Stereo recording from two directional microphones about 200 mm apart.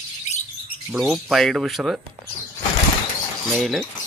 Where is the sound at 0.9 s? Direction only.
Centre (ahead or behind).